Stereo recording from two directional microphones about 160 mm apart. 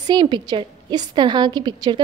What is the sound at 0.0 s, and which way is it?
A woman's voice, 25° right (ahead or behind).